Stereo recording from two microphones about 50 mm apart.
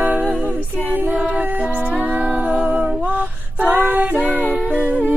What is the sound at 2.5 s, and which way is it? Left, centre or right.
Humming, right.